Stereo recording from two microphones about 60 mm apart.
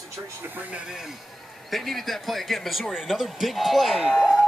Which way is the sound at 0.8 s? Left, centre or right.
Centre.